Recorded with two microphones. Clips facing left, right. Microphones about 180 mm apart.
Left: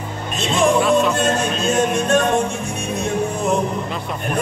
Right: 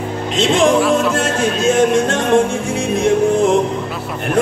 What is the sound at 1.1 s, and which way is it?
Music, 90° right.